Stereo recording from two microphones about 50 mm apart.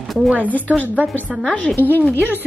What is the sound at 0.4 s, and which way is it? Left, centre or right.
Speech, left.